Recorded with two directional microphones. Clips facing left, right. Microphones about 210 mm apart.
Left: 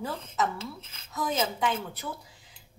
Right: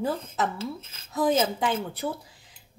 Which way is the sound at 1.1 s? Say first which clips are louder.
Right 6 dB; 30° right (ahead or behind).